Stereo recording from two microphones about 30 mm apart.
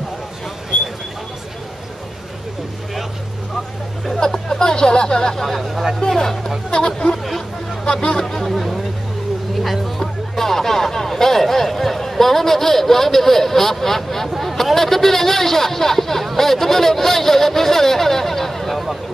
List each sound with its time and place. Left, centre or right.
4.5 s speech: left
5.6 s speech: centre
5.9 s speech: centre
7.8 s speech: left
8.3 s a sound: centre
14.4 s speech: centre